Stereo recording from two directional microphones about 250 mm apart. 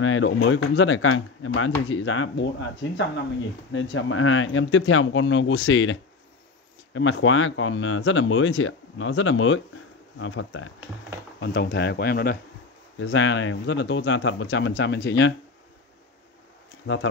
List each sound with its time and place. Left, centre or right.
0.0 s speech: left
3.7 s speech: left
11.3 s speech: left
13.0 s speech: left
16.8 s speech: left